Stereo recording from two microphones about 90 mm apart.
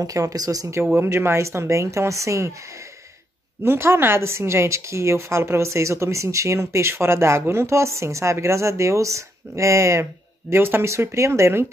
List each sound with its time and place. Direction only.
0.0 s speech: 40° right (ahead or behind)
0.9 s speech: 25° right (ahead or behind)
3.6 s speech: 25° right (ahead or behind)